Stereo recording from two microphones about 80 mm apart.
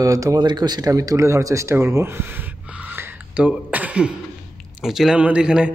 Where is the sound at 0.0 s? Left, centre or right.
Right.